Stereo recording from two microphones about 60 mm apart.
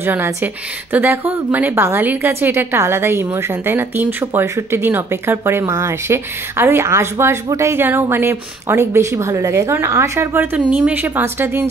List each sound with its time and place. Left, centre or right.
0.0 s a woman's voice: right
9.8 s speech: right
10.4 s a woman's voice: right